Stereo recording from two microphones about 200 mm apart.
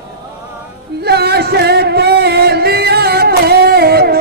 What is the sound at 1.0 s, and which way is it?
Music, 55° right (ahead or behind).